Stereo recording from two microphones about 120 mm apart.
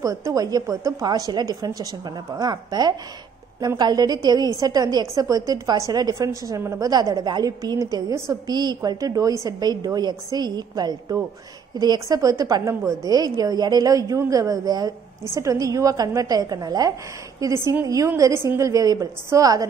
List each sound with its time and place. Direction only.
0.0 s a woman's voice: 25° right (ahead or behind)